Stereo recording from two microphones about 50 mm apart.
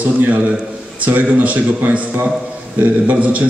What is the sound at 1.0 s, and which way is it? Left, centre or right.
A man's voice, right.